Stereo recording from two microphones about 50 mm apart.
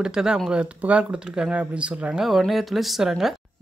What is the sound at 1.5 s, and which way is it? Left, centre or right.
Speech, right.